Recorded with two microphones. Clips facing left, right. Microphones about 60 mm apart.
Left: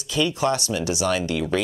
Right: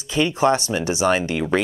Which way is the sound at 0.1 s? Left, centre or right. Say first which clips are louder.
Right 4 dB; right.